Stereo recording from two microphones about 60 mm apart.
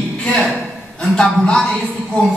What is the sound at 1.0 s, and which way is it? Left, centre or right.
Speech, centre.